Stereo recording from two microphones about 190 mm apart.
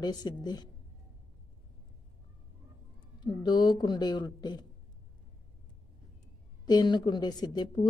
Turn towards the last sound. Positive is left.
turn(degrees=20)  # may be behind; listen again after turning